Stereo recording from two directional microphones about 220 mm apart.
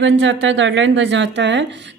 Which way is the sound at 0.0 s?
60° right (ahead or behind).